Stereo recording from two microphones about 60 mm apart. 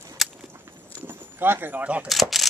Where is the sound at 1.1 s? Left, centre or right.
Right.